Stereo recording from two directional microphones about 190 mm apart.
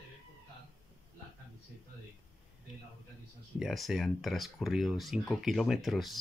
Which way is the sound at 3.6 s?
Centre (ahead or behind).